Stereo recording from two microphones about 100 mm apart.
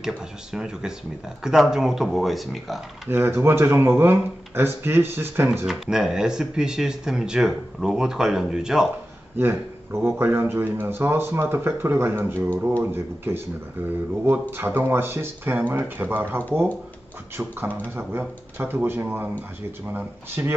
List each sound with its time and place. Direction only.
0.0 s speech: 5° right (ahead or behind)
3.1 s speech: 25° right (ahead or behind)
5.7 s speech: 5° right (ahead or behind)
9.4 s speech: 20° right (ahead or behind)
14.5 s speech: 20° right (ahead or behind)